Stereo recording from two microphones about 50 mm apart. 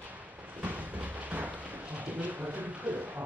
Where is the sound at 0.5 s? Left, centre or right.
Right.